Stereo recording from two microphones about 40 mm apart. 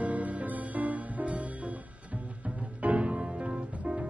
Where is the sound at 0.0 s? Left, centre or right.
Right.